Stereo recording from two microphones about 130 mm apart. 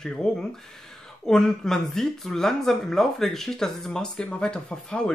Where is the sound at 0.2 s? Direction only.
5° left (ahead or behind).